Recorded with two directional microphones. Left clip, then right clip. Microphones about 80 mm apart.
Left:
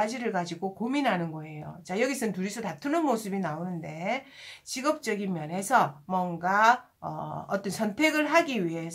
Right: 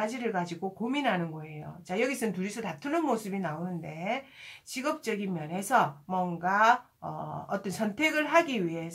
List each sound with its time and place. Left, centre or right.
0.0 s a woman's voice: left
4.7 s a woman's voice: left